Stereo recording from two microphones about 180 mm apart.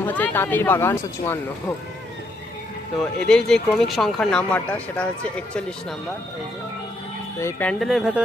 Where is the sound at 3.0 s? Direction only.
5° left (ahead or behind).